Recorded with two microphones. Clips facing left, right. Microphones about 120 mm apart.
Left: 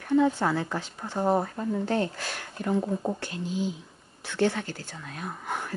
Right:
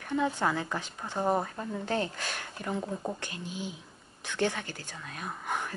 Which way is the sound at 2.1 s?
20° right (ahead or behind).